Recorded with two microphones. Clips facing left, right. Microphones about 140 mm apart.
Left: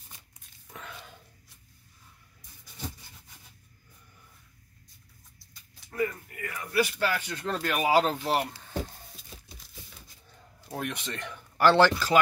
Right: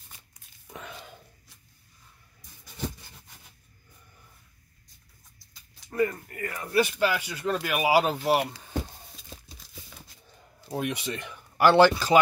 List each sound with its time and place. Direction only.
0.7 s a sound: 15° right (ahead or behind)
5.9 s speech: 45° right (ahead or behind)
6.7 s speech: 25° right (ahead or behind)
10.7 s speech: 10° right (ahead or behind)